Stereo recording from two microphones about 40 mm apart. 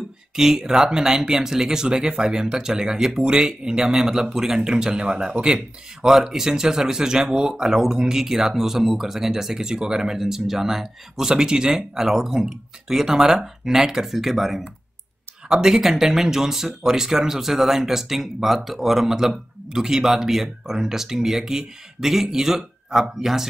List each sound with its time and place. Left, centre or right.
0.4 s speech: centre
6.0 s speech: centre
15.4 s speech: centre